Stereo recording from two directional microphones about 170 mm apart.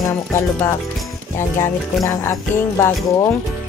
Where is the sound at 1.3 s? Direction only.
15° left (ahead or behind).